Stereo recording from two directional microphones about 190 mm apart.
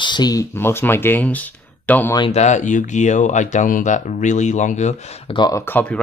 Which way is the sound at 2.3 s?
40° left (ahead or behind).